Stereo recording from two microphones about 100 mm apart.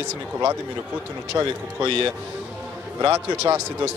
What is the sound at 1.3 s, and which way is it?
Speech, 25° right (ahead or behind).